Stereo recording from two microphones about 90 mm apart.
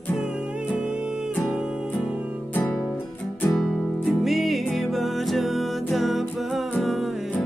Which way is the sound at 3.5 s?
5° left (ahead or behind).